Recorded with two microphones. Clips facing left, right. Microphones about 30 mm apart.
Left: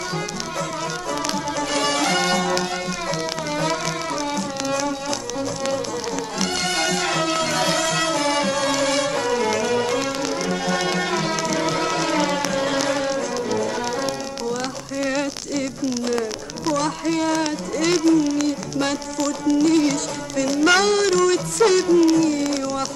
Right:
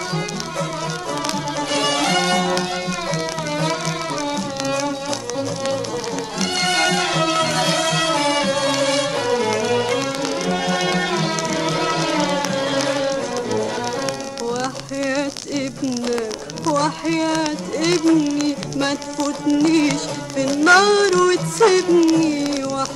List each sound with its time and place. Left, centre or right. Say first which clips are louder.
1.6 s music: right 2 dB; centre
4.2 s music: right 2 dB; centre
6.4 s music: right 4 dB; centre
15.0 s a sound: right 1 dB; centre
17.1 s a sound: left 1 dB; right
18.1 s music: right 1 dB; centre
19.6 s music: right 1 dB; right
20.3 s music: right 4 dB; centre
21.8 s a sound: right 1 dB; centre